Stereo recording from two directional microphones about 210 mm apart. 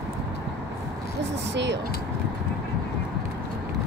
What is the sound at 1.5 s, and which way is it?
Speech, 60° right (ahead or behind).